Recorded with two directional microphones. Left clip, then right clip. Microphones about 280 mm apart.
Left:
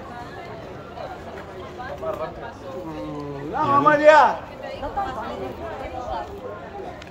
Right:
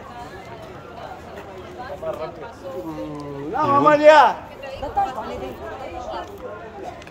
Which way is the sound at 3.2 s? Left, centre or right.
Right.